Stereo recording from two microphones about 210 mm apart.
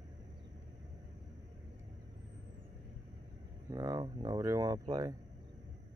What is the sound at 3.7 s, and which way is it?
Speech, 20° right (ahead or behind).